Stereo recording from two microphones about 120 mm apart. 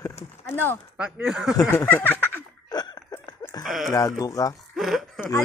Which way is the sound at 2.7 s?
35° left (ahead or behind).